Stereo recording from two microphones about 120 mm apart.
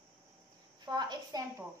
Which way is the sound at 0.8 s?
35° right (ahead or behind).